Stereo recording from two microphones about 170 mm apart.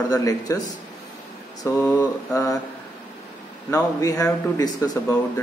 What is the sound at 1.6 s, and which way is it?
Speech, 20° left (ahead or behind).